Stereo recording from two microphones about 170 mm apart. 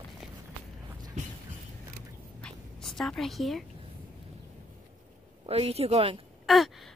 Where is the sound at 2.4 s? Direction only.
5° left (ahead or behind).